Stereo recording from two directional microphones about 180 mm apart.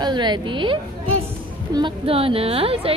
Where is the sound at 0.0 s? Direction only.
25° right (ahead or behind).